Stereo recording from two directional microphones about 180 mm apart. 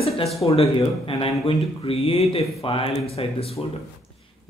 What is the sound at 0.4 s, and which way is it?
Speech, 35° left (ahead or behind).